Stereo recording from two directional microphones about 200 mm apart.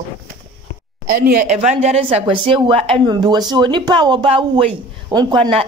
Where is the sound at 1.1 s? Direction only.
40° right (ahead or behind).